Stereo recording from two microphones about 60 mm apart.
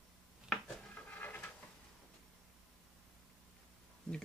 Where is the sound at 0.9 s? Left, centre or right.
Left.